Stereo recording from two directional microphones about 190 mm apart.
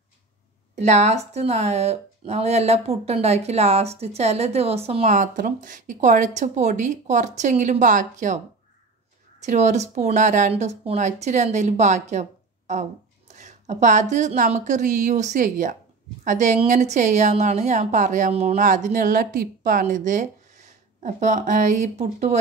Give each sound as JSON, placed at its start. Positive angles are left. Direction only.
{"t": 0.7, "sound": "speech", "side_deg": -35}
{"t": 9.4, "sound": "speech", "side_deg": -40}
{"t": 13.3, "sound": "a sound", "side_deg": -40}
{"t": 14.1, "sound": "speech", "side_deg": -40}